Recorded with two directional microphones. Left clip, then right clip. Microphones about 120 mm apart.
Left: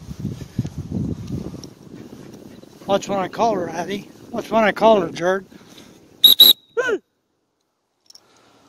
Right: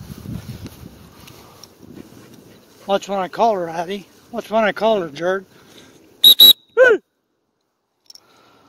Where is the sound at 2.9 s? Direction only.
40° left (ahead or behind).